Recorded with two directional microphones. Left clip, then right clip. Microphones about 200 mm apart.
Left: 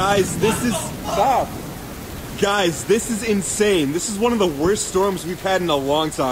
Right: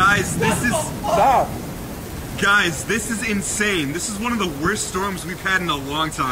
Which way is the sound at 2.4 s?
10° left (ahead or behind).